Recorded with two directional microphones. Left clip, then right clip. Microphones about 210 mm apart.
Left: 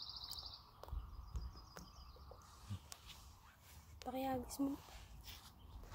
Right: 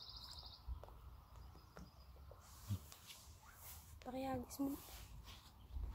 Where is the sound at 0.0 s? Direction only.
45° left (ahead or behind).